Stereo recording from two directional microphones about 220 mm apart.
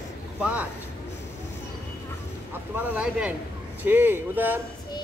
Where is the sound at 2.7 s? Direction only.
5° right (ahead or behind).